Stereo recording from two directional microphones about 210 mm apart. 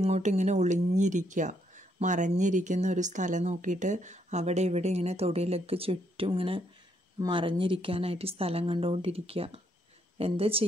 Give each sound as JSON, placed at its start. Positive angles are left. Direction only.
{"t": 0.0, "sound": "speech", "side_deg": -35}